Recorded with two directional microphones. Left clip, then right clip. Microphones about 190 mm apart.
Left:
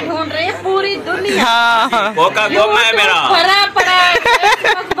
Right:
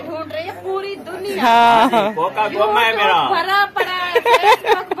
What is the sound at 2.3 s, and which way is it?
Speech, 40° right (ahead or behind).